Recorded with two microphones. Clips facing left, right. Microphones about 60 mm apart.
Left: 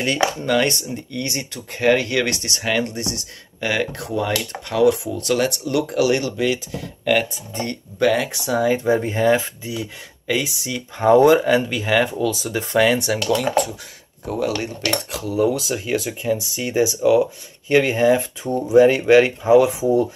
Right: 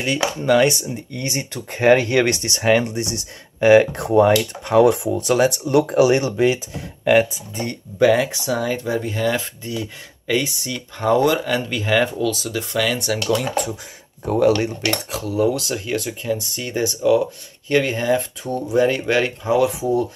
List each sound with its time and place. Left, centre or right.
0.5 s speech: centre
1.1 s speech: right
5.1 s speech: centre
8.0 s speech: centre
8.6 s speech: centre
9.4 s speech: centre
11.0 s speech: centre
12.3 s speech: centre
13.1 s speech: centre
14.2 s speech: right
14.9 s speech: centre